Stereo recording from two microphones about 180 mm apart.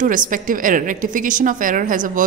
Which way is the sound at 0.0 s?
45° right (ahead or behind).